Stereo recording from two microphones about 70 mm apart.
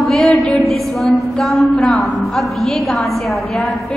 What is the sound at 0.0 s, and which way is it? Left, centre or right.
A woman's voice, centre.